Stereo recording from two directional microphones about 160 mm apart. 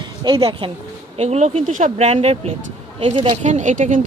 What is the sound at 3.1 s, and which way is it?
Speech, 30° right (ahead or behind).